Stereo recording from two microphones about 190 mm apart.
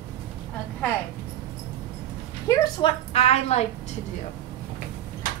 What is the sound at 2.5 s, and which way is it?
A woman's voice, 25° left (ahead or behind).